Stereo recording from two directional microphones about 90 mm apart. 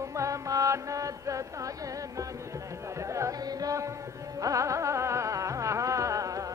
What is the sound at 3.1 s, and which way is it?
Speech, 40° right (ahead or behind).